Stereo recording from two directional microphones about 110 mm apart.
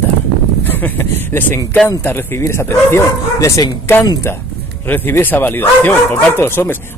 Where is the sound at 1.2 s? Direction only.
20° left (ahead or behind).